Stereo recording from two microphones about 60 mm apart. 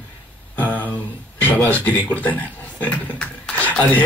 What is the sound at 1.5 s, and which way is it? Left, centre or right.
A man's voice, left.